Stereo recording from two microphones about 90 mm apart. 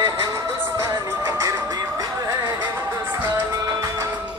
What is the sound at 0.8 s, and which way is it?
Music, 35° right (ahead or behind).